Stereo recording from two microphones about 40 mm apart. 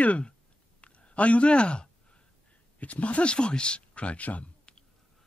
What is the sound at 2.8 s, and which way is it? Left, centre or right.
Speech, left.